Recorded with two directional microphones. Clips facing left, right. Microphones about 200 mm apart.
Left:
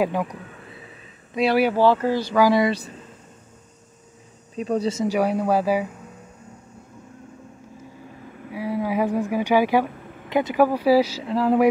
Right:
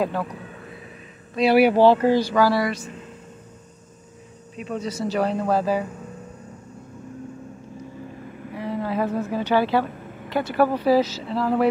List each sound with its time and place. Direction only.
0.0 s speech: 15° left (ahead or behind)
1.4 s speech: 10° right (ahead or behind)
2.3 s speech: 15° left (ahead or behind)
4.6 s speech: 35° left (ahead or behind)
4.9 s speech: 10° left (ahead or behind)
8.5 s a sound: 10° left (ahead or behind)
10.3 s speech: 15° left (ahead or behind)